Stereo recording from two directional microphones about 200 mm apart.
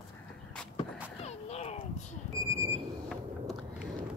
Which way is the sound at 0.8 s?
30° left (ahead or behind).